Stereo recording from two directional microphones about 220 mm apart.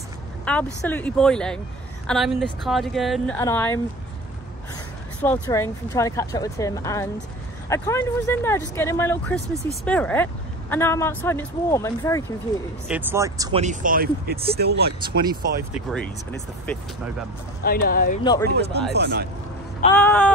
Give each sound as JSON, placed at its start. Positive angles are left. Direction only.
{"t": 0.5, "sound": "speech", "side_deg": 5}
{"t": 3.3, "sound": "speech", "side_deg": 10}
{"t": 5.2, "sound": "speech", "side_deg": 10}
{"t": 12.8, "sound": "speech", "side_deg": -10}
{"t": 13.5, "sound": "speech", "side_deg": -30}
{"t": 15.7, "sound": "speech", "side_deg": 5}
{"t": 17.6, "sound": "speech", "side_deg": 40}
{"t": 18.2, "sound": "speech", "side_deg": 20}
{"t": 18.5, "sound": "speech", "side_deg": -50}
{"t": 20.0, "sound": "speech", "side_deg": 5}